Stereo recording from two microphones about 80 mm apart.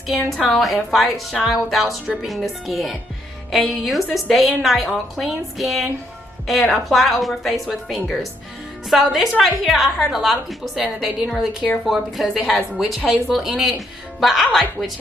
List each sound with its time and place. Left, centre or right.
0.0 s a woman's voice: centre
12.7 s a woman's voice: centre